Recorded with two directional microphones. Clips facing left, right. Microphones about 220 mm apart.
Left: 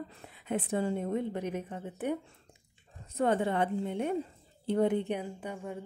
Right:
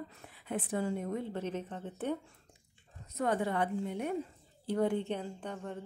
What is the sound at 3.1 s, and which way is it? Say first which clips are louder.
A woman's voice: left 4 dB; 30° left (ahead or behind).